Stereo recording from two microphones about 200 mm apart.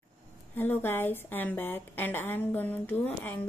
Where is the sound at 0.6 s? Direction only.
10° left (ahead or behind).